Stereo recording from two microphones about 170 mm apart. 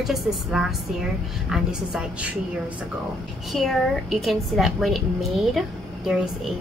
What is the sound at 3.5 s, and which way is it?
A woman's voice, centre (ahead or behind).